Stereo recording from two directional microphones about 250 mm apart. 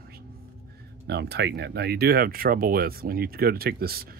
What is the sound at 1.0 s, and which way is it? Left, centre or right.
Speech, right.